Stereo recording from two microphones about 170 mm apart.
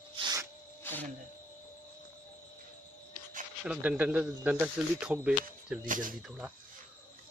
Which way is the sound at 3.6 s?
5° right (ahead or behind).